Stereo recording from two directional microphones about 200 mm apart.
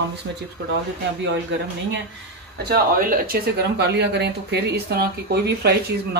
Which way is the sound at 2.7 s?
45° right (ahead or behind).